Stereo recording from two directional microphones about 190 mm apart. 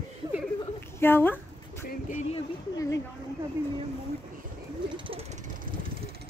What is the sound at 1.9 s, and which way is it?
Music, 45° left (ahead or behind).